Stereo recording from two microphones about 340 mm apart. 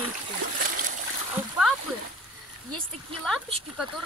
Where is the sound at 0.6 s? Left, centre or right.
Right.